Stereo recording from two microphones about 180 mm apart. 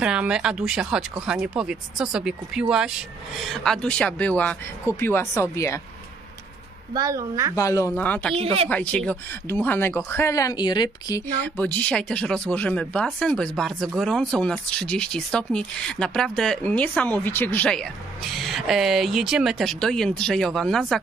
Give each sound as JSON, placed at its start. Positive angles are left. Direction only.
{"t": 0.0, "sound": "speech", "side_deg": -5}
{"t": 6.9, "sound": "a woman's voice", "side_deg": -20}
{"t": 7.5, "sound": "speech", "side_deg": 15}
{"t": 8.4, "sound": "speech", "side_deg": -35}
{"t": 8.6, "sound": "speech", "side_deg": 10}
{"t": 11.4, "sound": "speech", "side_deg": 10}